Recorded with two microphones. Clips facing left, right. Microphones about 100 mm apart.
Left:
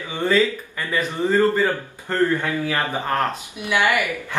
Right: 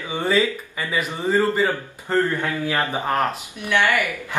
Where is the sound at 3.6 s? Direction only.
15° left (ahead or behind).